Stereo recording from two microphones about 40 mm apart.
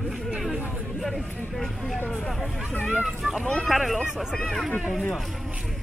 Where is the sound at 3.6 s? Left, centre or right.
Centre.